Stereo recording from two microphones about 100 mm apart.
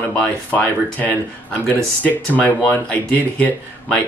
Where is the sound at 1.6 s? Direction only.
15° left (ahead or behind).